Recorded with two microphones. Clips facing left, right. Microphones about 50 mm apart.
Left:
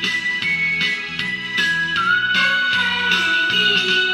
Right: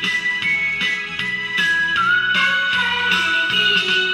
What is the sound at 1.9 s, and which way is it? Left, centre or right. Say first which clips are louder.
Music: right 1 dB; centre.